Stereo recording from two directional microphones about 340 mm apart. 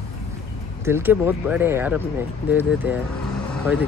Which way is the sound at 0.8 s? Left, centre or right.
Centre.